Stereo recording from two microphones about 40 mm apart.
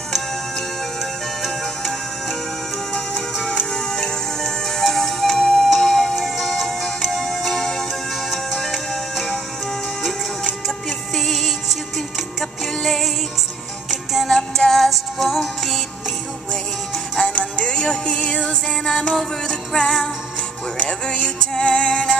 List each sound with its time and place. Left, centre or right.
1.4 s music: centre
3.2 s music: centre
5.7 s music: centre
10.9 s music: centre
17.2 s music: centre